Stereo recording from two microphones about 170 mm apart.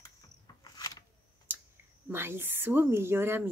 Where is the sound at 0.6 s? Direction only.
20° left (ahead or behind).